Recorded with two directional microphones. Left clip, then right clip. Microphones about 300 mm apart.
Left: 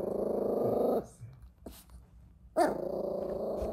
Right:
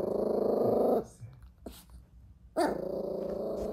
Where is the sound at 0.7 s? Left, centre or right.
Centre.